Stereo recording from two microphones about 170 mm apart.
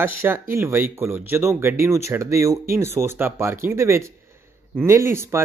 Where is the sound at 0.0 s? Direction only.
15° right (ahead or behind).